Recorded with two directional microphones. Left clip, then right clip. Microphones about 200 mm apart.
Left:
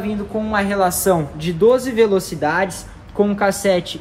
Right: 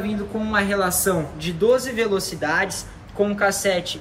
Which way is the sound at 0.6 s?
35° left (ahead or behind).